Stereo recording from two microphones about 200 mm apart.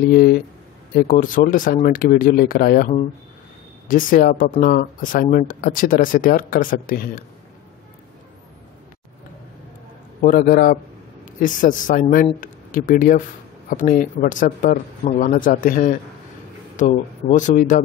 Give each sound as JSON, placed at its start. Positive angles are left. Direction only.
{"t": 0.1, "sound": "speech", "side_deg": 45}
{"t": 3.9, "sound": "speech", "side_deg": 45}
{"t": 10.2, "sound": "speech", "side_deg": 45}